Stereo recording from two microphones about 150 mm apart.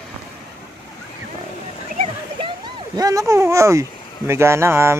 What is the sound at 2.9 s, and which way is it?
Speech, 20° right (ahead or behind).